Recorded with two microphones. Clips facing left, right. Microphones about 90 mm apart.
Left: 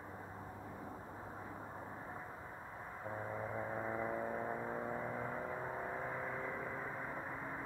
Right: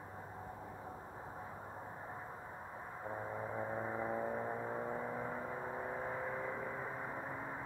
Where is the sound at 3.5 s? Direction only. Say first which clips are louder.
Right 2 dB; 15° right (ahead or behind).